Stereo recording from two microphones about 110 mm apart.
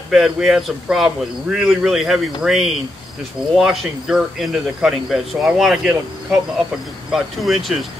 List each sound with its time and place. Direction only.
0.1 s speech: centre (ahead or behind)
7.1 s speech: centre (ahead or behind)